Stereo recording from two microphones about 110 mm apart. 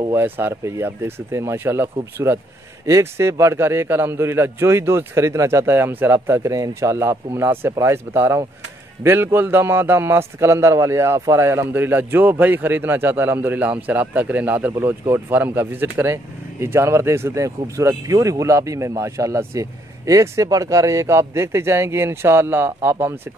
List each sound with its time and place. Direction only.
0.1 s a man's voice: 20° right (ahead or behind)